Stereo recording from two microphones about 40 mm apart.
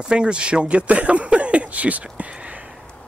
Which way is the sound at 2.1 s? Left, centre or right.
Right.